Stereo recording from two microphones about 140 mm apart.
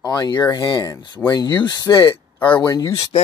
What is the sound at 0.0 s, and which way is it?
Speech, 30° left (ahead or behind).